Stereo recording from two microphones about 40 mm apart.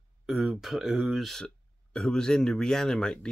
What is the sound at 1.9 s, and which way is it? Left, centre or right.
Speech, centre.